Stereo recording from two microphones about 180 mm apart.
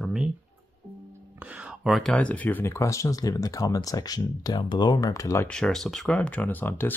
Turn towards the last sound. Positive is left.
turn(degrees=10)  # may be behind; listen again after turning